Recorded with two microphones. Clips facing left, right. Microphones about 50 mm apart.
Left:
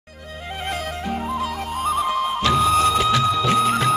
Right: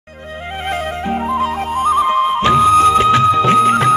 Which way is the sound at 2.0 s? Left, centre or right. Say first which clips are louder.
Right 7 dB; right.